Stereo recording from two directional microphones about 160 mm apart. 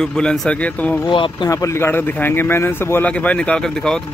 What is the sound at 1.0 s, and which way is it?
Speech, 30° left (ahead or behind).